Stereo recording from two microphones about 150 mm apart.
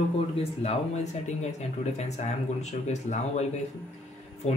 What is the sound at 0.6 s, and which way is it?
Speech, 50° left (ahead or behind).